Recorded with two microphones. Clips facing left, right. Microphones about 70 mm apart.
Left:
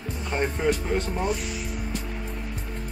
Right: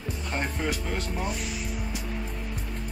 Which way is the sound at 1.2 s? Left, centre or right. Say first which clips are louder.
Left 4 dB; centre.